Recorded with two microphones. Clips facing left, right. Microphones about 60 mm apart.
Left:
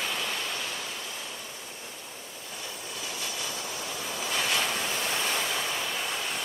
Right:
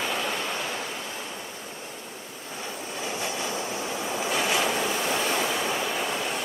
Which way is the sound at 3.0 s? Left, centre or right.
Right.